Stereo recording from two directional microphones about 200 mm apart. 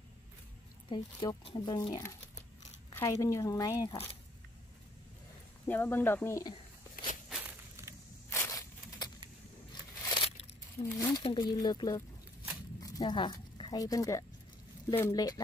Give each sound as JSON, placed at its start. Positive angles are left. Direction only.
{"t": 0.8, "sound": "a woman's voice", "side_deg": 25}
{"t": 5.7, "sound": "a woman's voice", "side_deg": 10}
{"t": 7.2, "sound": "walk", "side_deg": -5}
{"t": 8.3, "sound": "zipper", "side_deg": 15}
{"t": 10.0, "sound": "crunch", "side_deg": 25}
{"t": 10.8, "sound": "speech", "side_deg": 25}